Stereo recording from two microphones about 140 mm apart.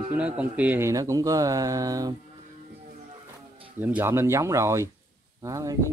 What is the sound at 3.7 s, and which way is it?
Speech, 15° right (ahead or behind).